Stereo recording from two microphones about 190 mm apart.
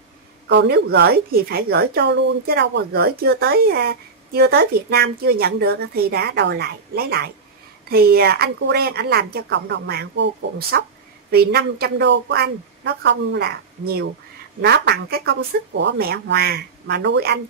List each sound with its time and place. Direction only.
0.5 s a woman's voice: 60° right (ahead or behind)